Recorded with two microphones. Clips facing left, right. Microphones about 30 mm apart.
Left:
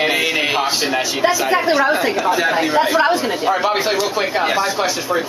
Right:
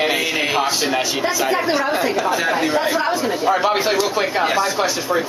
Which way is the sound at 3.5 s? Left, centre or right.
Centre.